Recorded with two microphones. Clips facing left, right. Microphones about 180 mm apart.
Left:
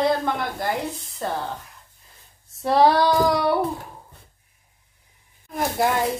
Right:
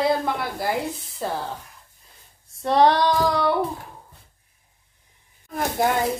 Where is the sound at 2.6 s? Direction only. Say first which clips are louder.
Left 1 dB; 5° left (ahead or behind).